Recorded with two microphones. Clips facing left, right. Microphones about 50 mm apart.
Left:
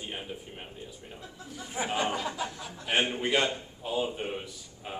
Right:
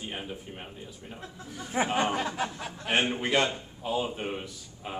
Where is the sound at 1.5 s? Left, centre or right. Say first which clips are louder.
Right 5 dB; right.